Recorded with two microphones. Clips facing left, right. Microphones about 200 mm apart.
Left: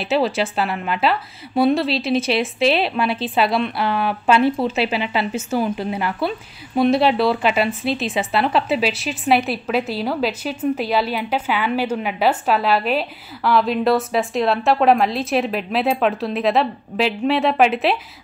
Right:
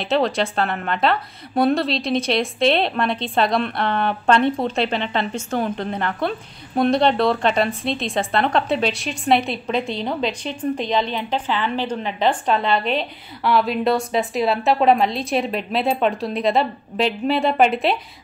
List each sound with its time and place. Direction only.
0.0 s a woman's voice: 5° left (ahead or behind)